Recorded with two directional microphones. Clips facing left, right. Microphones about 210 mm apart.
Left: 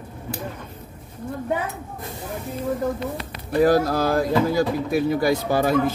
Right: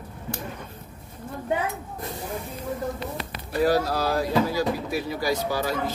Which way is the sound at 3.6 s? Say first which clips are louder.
Left 4 dB; 50° left (ahead or behind).